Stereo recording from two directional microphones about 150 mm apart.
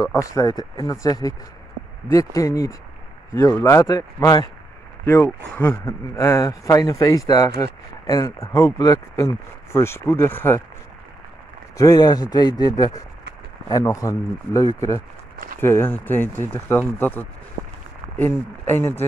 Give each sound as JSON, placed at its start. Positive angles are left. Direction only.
{"t": 0.0, "sound": "speech", "side_deg": 20}
{"t": 5.0, "sound": "speech", "side_deg": 15}
{"t": 11.7, "sound": "speech", "side_deg": 25}